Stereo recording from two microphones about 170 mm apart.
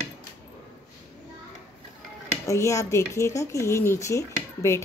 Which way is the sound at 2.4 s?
15° left (ahead or behind).